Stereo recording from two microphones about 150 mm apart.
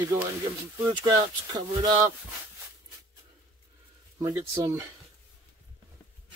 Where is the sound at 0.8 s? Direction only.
25° right (ahead or behind).